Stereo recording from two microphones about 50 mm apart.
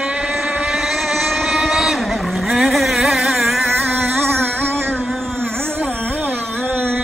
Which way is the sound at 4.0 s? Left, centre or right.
Right.